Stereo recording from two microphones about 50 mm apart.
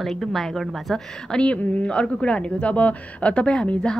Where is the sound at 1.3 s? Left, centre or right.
Centre.